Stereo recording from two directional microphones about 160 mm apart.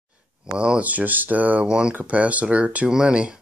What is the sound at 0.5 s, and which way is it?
Speech, 5° right (ahead or behind).